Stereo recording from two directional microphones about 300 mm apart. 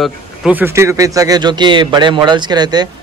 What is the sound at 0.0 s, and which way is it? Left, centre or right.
Speech, centre.